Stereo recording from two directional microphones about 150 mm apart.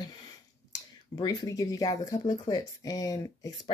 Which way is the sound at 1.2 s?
25° left (ahead or behind).